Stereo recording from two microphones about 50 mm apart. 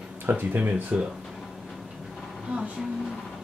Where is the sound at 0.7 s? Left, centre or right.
Right.